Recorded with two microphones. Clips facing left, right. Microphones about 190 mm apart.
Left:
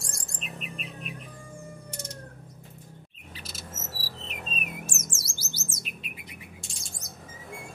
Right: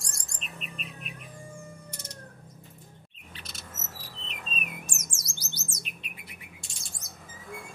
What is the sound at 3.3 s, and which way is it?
Chirp, centre (ahead or behind).